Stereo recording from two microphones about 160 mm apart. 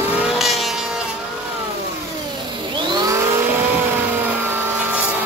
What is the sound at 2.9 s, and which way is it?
Vehicle, 25° right (ahead or behind).